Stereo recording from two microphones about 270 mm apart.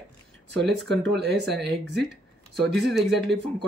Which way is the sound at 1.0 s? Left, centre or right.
Right.